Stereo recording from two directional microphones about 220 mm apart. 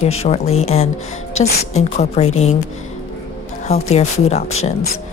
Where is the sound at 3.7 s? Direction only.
30° left (ahead or behind).